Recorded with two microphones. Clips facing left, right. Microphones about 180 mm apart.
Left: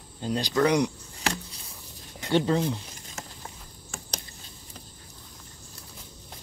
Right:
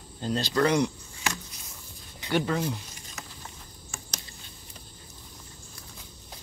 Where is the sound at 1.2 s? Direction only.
30° left (ahead or behind).